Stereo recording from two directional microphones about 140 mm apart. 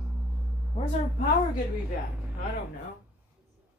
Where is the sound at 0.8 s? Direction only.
35° left (ahead or behind).